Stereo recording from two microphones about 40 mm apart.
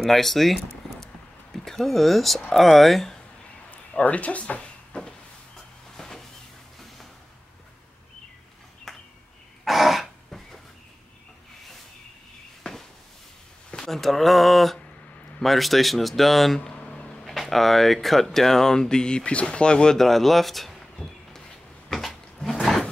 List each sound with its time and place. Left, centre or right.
0.0 s speech: centre
1.0 s a sound: centre
2.5 s speech: centre
4.0 s speech: left
4.9 s a sound: left
5.9 s vehicle: centre
8.9 s a sound: centre
9.7 s throat clearing: centre
12.6 s a sound: centre
15.4 s speech: centre; by 20.0 s left
20.0 s speech: centre
22.0 s drawer open or close: centre